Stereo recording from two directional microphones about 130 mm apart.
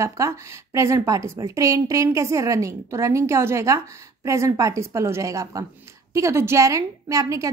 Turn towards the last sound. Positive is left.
turn(degrees=-25)  # may be behind; listen again after turning